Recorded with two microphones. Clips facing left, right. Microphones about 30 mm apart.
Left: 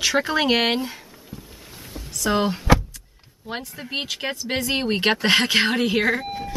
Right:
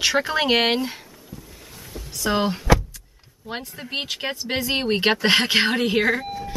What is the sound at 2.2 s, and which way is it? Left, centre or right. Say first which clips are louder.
Speech: left 1 dB; centre.